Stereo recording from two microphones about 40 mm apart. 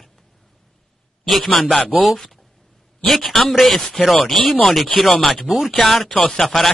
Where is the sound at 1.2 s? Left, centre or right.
Centre.